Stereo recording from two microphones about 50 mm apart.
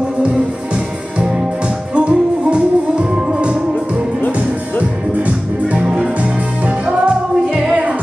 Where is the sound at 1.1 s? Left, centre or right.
Centre.